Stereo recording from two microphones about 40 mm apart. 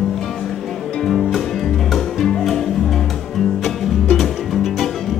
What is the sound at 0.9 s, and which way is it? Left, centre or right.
Music, centre.